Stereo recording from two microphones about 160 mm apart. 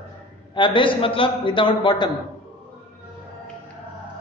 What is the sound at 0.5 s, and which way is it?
A man's voice, 30° left (ahead or behind).